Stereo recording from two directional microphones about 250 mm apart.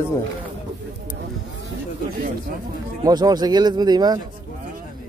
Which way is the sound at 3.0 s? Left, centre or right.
Centre.